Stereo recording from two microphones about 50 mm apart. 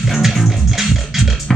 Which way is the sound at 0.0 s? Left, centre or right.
Centre.